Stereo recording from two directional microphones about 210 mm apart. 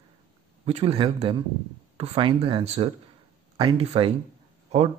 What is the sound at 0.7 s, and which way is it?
Speech, 30° right (ahead or behind).